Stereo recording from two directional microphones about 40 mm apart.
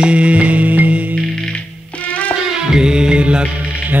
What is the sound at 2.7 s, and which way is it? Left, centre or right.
Music, centre.